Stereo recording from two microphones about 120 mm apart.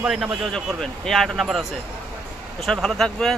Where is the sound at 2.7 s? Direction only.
5° left (ahead or behind).